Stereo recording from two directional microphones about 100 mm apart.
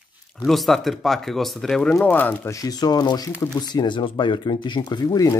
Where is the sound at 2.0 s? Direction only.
15° left (ahead or behind).